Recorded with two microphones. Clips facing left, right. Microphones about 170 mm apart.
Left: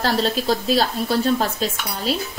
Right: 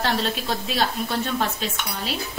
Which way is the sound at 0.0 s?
35° left (ahead or behind).